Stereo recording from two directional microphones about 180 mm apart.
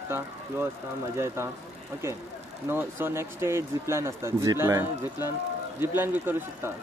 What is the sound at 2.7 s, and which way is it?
Speech, 15° right (ahead or behind).